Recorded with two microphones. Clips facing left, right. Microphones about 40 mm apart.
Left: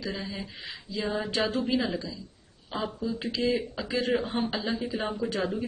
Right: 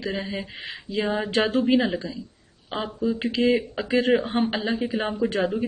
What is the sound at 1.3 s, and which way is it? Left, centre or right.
Speech, right.